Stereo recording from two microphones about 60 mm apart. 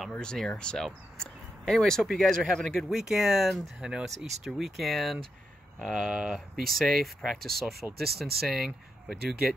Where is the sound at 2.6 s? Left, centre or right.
Centre.